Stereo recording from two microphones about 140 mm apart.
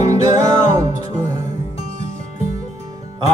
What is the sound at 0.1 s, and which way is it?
Music, 25° right (ahead or behind).